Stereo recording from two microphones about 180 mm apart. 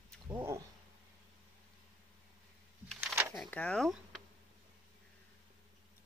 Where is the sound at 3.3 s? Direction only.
5° left (ahead or behind).